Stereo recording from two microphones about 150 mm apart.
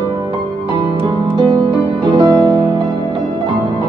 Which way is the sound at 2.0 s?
30° right (ahead or behind).